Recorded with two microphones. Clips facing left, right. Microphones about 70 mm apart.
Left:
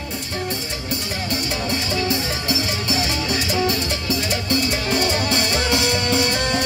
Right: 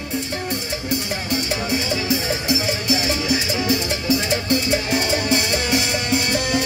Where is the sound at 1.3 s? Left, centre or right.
Centre.